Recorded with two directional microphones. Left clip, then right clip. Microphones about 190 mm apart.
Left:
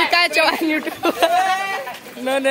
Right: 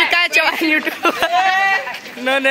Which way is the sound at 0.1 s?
Centre (ahead or behind).